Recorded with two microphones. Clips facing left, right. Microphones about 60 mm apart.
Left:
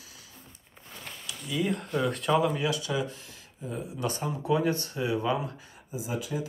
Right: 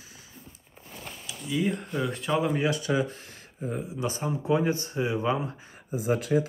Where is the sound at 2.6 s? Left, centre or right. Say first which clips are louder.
Right 3 dB; right.